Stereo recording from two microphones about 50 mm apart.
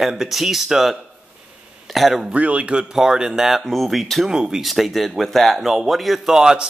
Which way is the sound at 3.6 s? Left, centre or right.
Centre.